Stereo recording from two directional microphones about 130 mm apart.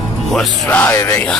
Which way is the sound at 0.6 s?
15° left (ahead or behind).